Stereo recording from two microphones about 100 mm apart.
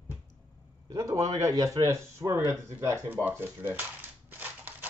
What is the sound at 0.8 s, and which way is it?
A man's voice, 35° right (ahead or behind).